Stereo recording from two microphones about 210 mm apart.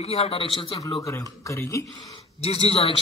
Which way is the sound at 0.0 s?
30° left (ahead or behind).